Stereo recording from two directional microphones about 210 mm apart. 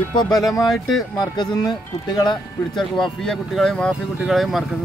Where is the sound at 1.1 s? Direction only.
20° left (ahead or behind).